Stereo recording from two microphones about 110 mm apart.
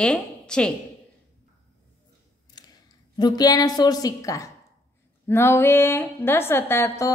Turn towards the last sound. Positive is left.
turn(degrees=25)  # may be behind; listen again after turning